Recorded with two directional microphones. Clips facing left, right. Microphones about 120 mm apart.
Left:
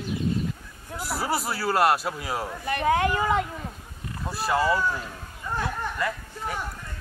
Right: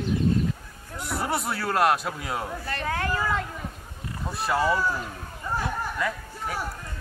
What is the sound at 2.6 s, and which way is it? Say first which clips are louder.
Speech: left 8 dB; 15° left (ahead or behind).